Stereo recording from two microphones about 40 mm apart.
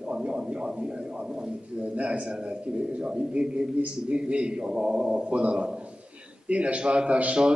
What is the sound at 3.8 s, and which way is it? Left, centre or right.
A man's voice, right.